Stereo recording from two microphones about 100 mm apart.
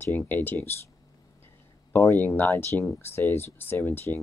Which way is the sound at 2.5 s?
30° left (ahead or behind).